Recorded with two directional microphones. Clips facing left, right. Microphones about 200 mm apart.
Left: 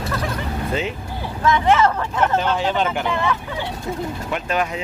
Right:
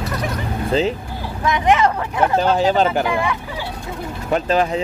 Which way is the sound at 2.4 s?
40° right (ahead or behind).